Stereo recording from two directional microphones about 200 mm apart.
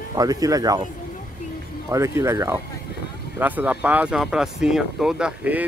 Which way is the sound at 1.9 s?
15° right (ahead or behind).